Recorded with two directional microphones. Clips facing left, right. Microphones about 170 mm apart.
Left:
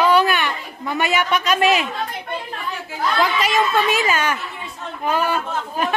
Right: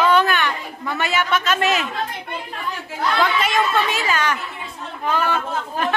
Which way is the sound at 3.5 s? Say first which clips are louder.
Left 2 dB; 15° left (ahead or behind).